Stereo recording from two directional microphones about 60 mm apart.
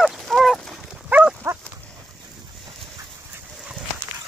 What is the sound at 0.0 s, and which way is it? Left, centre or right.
Goose, centre.